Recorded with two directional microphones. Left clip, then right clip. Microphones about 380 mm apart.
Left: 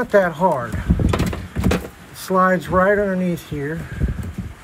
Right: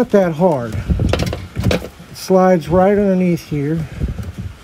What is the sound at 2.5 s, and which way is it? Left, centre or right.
Speech, centre.